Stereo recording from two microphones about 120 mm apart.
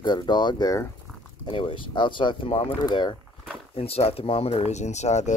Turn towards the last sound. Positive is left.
turn(degrees=75)  # may be behind; listen again after turning